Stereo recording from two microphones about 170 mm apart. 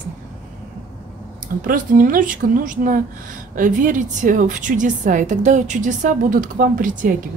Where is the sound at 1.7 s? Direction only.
55° right (ahead or behind).